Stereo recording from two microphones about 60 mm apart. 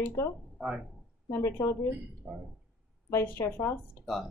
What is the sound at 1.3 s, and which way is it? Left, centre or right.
Speech, left.